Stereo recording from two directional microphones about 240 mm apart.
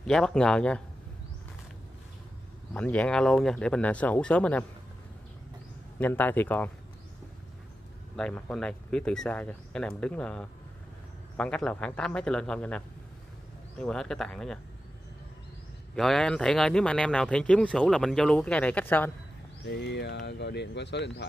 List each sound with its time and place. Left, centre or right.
0.0 s speech: centre
2.7 s speech: centre
5.9 s a man's voice: centre
8.2 s speech: centre
15.9 s speech: centre
19.6 s speech: left